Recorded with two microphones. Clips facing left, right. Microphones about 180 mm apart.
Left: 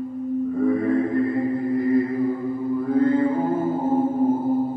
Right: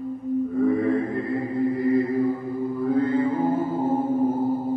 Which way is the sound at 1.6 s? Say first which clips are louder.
Right 2 dB; 45° left (ahead or behind).